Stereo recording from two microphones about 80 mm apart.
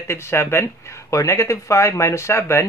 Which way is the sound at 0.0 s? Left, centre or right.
Left.